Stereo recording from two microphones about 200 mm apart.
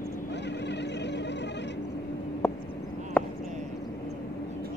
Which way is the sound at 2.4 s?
10° left (ahead or behind).